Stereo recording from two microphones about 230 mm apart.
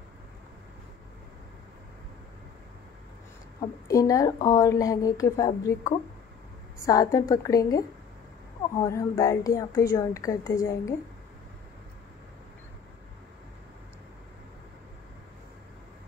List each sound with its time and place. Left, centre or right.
3.8 s speech: centre
8.8 s speech: centre